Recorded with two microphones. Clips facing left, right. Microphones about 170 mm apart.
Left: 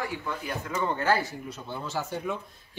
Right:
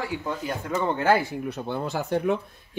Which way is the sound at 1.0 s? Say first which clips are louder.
Right 5 dB; 55° right (ahead or behind).